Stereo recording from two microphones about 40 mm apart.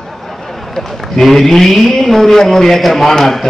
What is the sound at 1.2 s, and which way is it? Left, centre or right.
A man's voice, centre.